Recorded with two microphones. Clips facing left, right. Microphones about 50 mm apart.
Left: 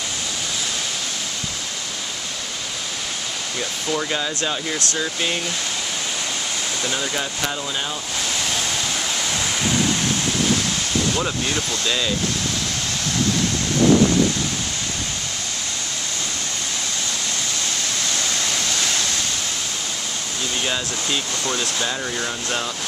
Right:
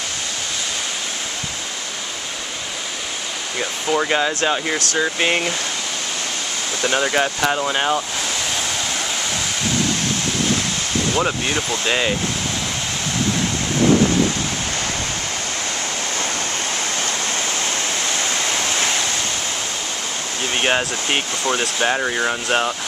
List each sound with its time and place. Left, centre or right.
3.5 s speech: right
6.8 s speech: right
7.7 s speech: right
11.1 s speech: right
11.8 s speech: right
17.6 s waterfall: right
20.5 s speech: right